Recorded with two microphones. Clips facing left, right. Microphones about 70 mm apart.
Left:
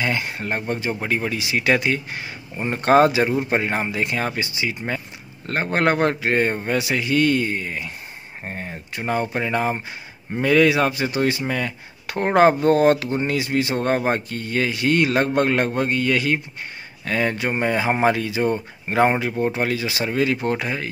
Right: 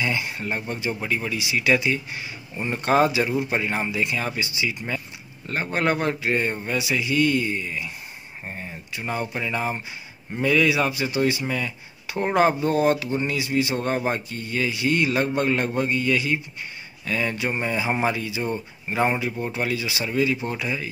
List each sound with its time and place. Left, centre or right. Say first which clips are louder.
0.0 s speech: left 2 dB; left